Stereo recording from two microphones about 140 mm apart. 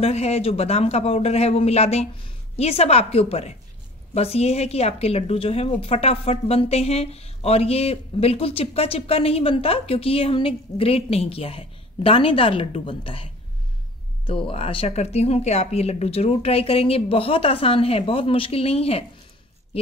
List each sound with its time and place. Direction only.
0.0 s a woman's voice: 50° left (ahead or behind)